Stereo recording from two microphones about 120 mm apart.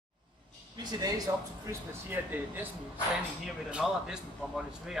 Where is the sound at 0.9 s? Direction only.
30° right (ahead or behind).